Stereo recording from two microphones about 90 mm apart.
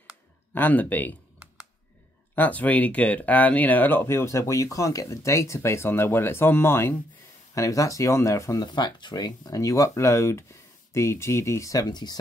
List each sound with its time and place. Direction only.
0.6 s speech: 20° left (ahead or behind)
2.3 s speech: 15° left (ahead or behind); by 8.6 s 35° left (ahead or behind)
8.7 s speech: 55° left (ahead or behind)